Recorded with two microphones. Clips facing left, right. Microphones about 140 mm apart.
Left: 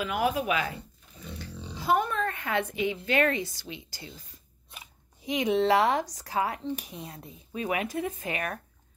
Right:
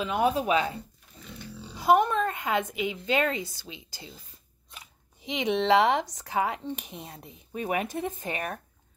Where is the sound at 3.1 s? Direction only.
20° right (ahead or behind).